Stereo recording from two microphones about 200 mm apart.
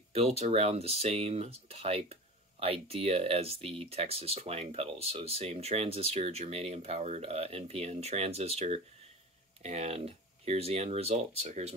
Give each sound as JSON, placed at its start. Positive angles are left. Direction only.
{"t": 0.4, "sound": "speech", "side_deg": -30}